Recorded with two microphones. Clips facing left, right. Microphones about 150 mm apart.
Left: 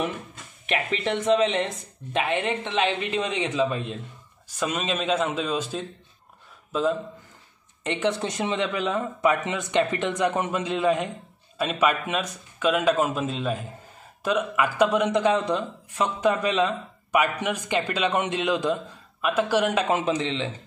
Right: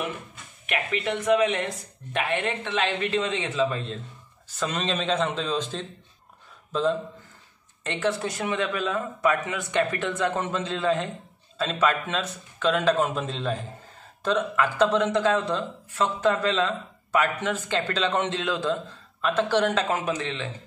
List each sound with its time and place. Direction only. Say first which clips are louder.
0.7 s a man's voice: left 2 dB; 25° left (ahead or behind); by 7.0 s 5° left (ahead or behind)
7.8 s a man's voice: left 1 dB; 20° left (ahead or behind)